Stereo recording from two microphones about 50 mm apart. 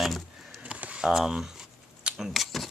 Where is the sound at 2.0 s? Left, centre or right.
Centre.